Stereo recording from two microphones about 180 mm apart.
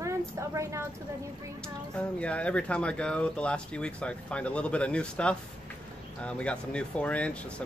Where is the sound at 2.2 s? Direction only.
5° left (ahead or behind).